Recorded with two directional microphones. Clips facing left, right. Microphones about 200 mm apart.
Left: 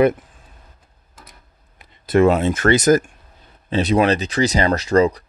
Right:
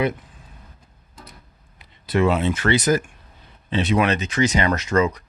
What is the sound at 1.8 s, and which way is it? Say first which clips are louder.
Speech: left 5 dB; 45° left (ahead or behind).